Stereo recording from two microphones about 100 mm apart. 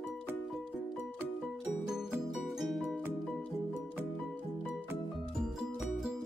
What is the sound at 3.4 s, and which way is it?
Music, 15° left (ahead or behind).